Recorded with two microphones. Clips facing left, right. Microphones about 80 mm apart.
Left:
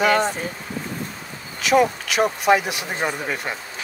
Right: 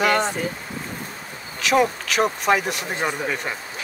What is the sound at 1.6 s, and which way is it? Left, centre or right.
Speech, centre.